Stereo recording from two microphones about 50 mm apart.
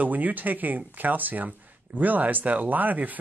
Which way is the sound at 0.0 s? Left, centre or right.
Right.